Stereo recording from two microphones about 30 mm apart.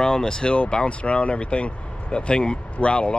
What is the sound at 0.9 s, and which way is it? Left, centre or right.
Speech, left.